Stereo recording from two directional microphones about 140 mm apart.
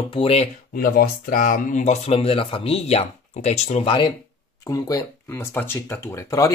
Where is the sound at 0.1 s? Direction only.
45° left (ahead or behind).